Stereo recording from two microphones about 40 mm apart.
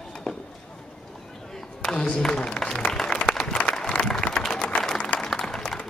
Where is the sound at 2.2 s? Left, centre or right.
Centre.